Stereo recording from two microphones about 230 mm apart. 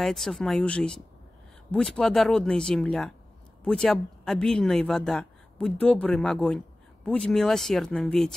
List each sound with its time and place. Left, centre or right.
0.0 s speech: centre